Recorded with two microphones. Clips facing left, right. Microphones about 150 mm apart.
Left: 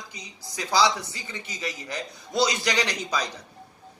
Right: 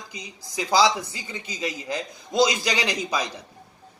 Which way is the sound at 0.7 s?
15° right (ahead or behind).